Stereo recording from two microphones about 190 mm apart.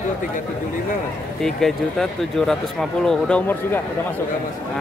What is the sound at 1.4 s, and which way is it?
Speech, centre (ahead or behind).